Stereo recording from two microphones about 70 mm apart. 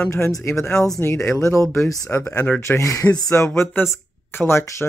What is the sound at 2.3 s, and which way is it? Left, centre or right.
Speech, centre.